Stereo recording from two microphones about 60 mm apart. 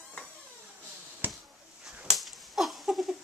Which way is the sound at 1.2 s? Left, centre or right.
Right.